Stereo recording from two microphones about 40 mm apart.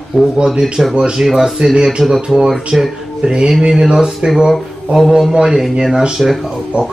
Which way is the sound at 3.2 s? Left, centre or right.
Centre.